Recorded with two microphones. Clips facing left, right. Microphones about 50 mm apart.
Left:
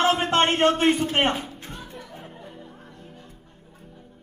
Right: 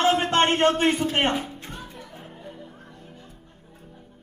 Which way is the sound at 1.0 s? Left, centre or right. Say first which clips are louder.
Left 1 dB; centre.